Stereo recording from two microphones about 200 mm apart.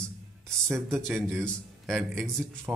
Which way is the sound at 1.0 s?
Centre (ahead or behind).